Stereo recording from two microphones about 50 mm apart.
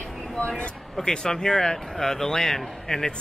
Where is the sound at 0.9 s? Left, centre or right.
Centre.